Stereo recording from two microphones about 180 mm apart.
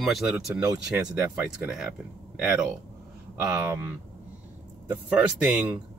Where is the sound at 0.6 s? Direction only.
20° right (ahead or behind).